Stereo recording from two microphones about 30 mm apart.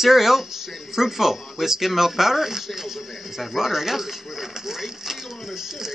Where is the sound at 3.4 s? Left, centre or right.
Centre.